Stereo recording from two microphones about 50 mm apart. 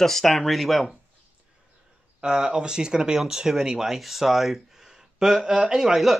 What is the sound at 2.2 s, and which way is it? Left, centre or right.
Speech, centre.